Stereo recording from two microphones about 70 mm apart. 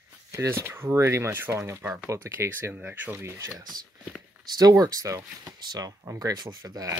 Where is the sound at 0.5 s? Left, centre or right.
Right.